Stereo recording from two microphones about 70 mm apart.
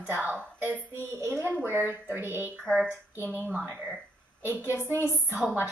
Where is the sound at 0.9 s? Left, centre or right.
Right.